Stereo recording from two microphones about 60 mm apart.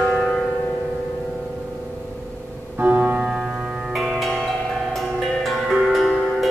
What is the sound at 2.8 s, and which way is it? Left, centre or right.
Music, right.